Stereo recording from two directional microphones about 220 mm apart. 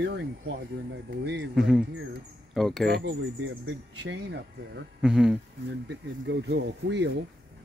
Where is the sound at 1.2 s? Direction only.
50° right (ahead or behind).